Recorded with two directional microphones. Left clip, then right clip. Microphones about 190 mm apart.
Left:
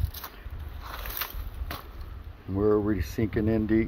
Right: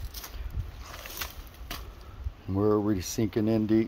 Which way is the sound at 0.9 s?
20° left (ahead or behind).